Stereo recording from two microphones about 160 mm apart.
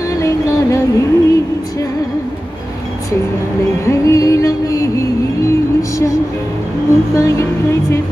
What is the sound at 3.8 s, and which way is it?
Music, 20° left (ahead or behind).